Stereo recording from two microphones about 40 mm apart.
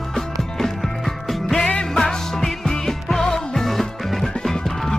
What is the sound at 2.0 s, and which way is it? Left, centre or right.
Music, centre.